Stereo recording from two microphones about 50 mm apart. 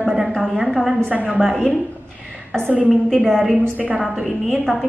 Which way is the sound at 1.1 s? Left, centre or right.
Right.